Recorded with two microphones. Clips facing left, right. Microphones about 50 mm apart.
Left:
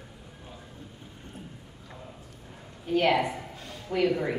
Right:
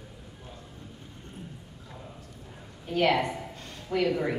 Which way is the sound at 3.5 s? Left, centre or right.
Centre.